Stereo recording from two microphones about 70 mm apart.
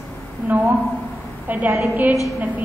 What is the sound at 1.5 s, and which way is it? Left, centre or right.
Speech, right.